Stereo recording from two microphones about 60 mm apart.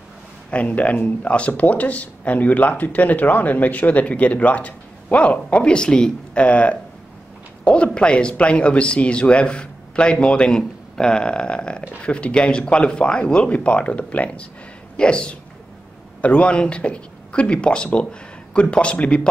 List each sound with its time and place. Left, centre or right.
0.5 s speech: left